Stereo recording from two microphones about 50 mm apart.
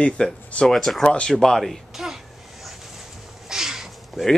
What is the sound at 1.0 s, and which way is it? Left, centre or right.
Speech, left.